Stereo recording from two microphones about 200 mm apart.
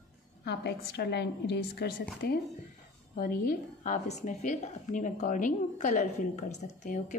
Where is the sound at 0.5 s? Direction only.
55° left (ahead or behind).